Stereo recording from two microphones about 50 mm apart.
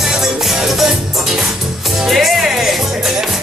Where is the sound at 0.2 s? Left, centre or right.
Centre.